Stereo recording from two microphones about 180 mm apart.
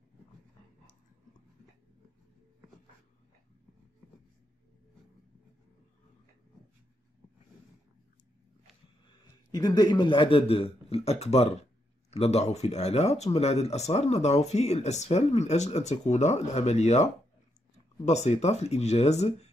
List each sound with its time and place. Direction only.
9.2 s a man's voice: 20° left (ahead or behind); by 19.5 s 35° left (ahead or behind)